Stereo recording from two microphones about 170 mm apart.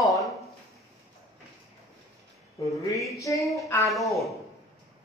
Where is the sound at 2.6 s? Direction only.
20° left (ahead or behind).